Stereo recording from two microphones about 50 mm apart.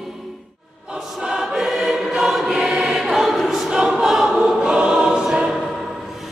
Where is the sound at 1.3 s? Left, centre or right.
Centre.